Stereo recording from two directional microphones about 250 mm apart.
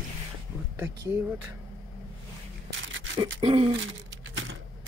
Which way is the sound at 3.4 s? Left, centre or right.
Right.